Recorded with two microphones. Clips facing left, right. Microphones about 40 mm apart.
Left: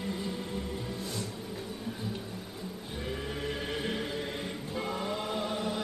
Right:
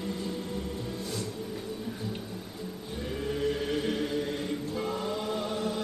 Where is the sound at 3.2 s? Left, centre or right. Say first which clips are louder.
Right 10 dB; centre.